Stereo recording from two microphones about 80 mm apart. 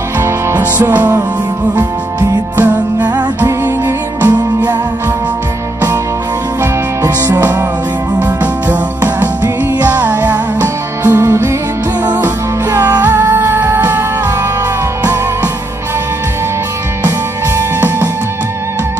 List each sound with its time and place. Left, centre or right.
0.2 s music: right
3.4 s music: right
4.2 s music: centre
6.6 s music: right
8.2 s music: centre
9.8 s music: right
11.1 s music: right
12.7 s music: right
17.6 s music: right